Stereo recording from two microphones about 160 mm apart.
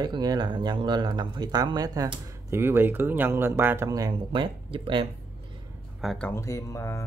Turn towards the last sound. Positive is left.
turn(degrees=15)  # may be behind; listen again after turning